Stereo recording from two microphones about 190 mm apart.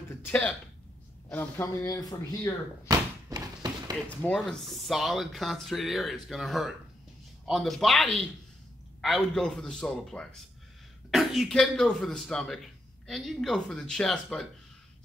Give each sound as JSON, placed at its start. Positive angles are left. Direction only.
{"t": 0.1, "sound": "speech", "side_deg": 10}
{"t": 2.9, "sound": "thump", "side_deg": -20}
{"t": 4.2, "sound": "speech", "side_deg": 5}